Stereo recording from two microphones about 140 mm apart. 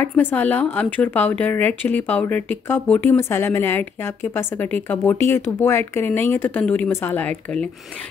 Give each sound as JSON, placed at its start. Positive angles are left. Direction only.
{"t": 0.0, "sound": "speech", "side_deg": 15}